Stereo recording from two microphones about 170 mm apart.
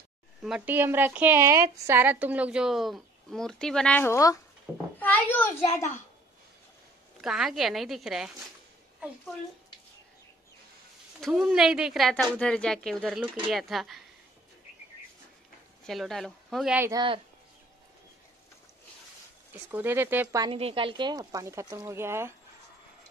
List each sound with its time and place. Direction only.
0.4 s a woman's voice: 5° right (ahead or behind); by 5.9 s 15° left (ahead or behind)
7.2 s a woman's voice: centre (ahead or behind)
11.1 s a woman's voice: centre (ahead or behind)
15.9 s a woman's voice: centre (ahead or behind)
16.7 s speech: 15° right (ahead or behind)
19.7 s speech: 10° right (ahead or behind)
20.4 s speech: 35° right (ahead or behind); by 22.3 s 15° right (ahead or behind)